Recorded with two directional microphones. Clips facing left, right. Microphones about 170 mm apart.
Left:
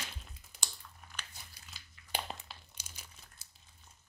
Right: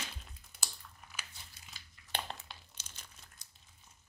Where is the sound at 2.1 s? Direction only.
10° left (ahead or behind).